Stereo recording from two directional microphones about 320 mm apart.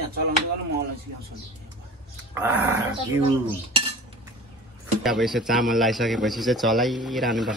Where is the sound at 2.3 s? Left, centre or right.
Centre.